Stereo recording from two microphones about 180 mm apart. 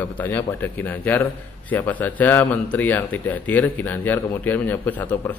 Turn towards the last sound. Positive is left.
turn(degrees=10)  # may be behind; listen again after turning